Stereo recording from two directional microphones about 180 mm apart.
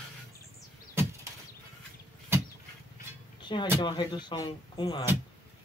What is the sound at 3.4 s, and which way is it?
Speech, 25° left (ahead or behind).